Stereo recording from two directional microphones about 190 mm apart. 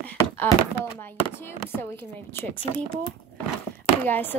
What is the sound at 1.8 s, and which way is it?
Speech, 10° left (ahead or behind).